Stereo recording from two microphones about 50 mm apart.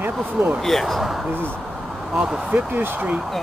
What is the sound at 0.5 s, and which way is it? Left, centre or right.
Speech, centre.